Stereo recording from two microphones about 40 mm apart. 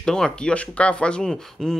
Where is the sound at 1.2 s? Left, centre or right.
Centre.